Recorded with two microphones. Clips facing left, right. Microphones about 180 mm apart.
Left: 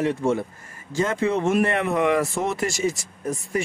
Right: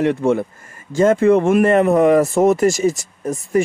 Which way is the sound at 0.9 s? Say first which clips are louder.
Right 10 dB; 50° right (ahead or behind).